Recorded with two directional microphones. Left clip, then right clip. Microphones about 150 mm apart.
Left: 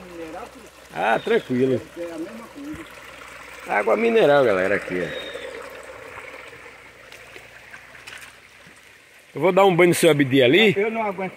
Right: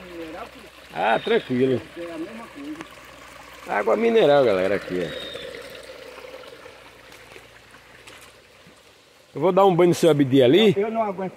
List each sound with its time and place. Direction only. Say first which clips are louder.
0.9 s speech: even; 10° left (ahead or behind)
2.0 s speech: left 2 dB; 25° left (ahead or behind)
3.6 s speech: left 1 dB; 5° left (ahead or behind)
9.3 s speech: left 1 dB; centre (ahead or behind)
10.1 s speech: even; 20° right (ahead or behind)
10.8 s speech: left 1 dB; 5° left (ahead or behind)